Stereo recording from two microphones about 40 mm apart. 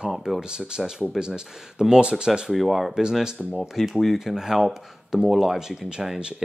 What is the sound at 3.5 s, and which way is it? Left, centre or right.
Speech, centre.